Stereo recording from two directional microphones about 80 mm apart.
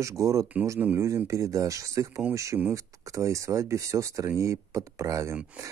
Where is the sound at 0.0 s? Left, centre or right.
Right.